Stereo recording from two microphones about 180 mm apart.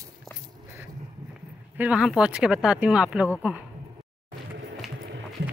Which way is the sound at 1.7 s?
5° right (ahead or behind).